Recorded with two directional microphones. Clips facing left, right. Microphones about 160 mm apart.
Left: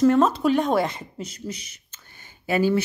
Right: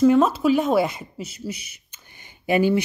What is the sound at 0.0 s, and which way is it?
Speech, 5° right (ahead or behind).